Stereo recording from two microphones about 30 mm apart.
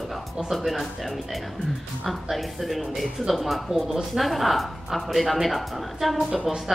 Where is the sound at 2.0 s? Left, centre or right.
Centre.